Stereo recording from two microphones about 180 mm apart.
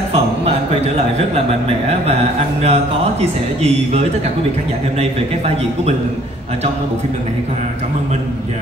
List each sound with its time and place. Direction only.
0.1 s speech: 35° right (ahead or behind)
2.6 s speech: 35° right (ahead or behind)